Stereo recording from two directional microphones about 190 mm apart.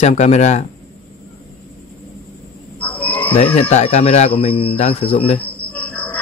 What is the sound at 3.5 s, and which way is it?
A man's voice, 30° left (ahead or behind).